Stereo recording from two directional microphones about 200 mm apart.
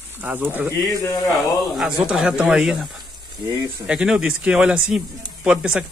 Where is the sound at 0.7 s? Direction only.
15° left (ahead or behind).